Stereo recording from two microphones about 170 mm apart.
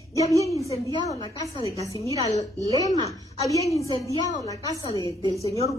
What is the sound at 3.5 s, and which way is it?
A woman's voice, 20° left (ahead or behind).